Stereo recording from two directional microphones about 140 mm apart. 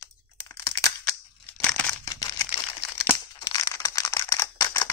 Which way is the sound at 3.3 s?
30° left (ahead or behind).